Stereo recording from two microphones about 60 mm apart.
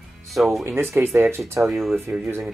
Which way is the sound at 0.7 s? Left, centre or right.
Right.